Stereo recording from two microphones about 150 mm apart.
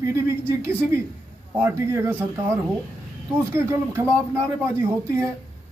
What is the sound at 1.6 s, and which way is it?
Speech, 15° right (ahead or behind).